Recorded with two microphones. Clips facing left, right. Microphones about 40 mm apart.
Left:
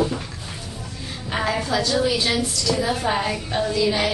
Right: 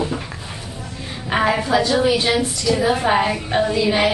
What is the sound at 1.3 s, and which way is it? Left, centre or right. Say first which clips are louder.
A woman's voice: right 6 dB; right.